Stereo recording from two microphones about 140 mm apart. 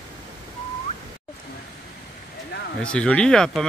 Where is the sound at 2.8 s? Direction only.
10° left (ahead or behind).